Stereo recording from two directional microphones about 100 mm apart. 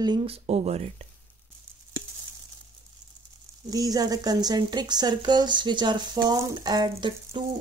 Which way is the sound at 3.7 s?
40° right (ahead or behind).